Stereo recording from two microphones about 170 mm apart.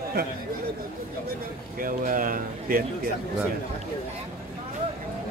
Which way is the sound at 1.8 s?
55° right (ahead or behind).